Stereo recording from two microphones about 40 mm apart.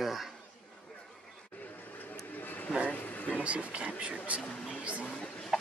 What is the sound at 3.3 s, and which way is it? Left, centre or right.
Speech, right.